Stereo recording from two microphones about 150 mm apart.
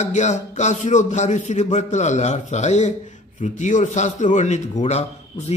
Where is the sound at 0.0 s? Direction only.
50° left (ahead or behind).